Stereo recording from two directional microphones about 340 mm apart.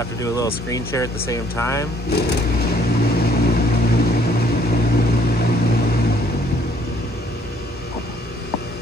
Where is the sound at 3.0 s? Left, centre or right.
Left.